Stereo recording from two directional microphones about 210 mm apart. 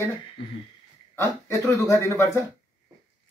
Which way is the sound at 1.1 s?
15° left (ahead or behind).